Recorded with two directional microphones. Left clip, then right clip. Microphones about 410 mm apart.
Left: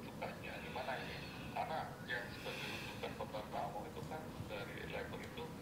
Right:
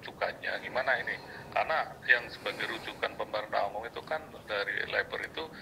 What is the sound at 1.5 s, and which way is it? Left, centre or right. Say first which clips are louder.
Speech: right 13 dB; right.